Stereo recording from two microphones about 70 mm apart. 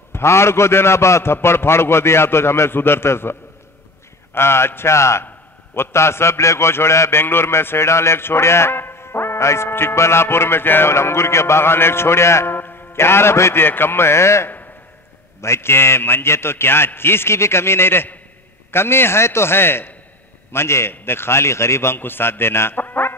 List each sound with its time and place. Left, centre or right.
0.1 s a man's voice: left